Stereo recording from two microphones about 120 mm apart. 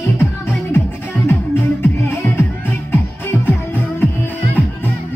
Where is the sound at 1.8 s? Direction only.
20° left (ahead or behind).